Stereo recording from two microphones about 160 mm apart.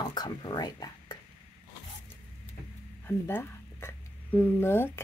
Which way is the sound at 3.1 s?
15° left (ahead or behind).